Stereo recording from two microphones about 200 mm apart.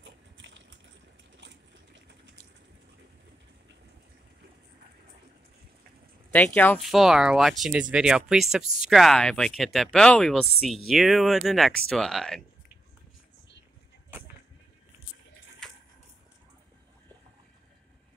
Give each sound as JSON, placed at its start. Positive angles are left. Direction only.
{"t": 0.0, "sound": "a sound", "side_deg": -65}
{"t": 6.3, "sound": "speech", "side_deg": 5}
{"t": 15.6, "sound": "water", "side_deg": 0}